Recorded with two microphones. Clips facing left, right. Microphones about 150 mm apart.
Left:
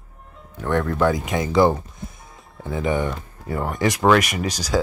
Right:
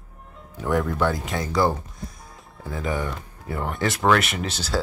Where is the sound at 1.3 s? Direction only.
20° left (ahead or behind).